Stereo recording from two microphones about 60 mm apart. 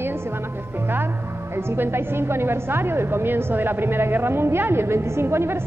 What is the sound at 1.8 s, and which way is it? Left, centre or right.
A woman's voice, right.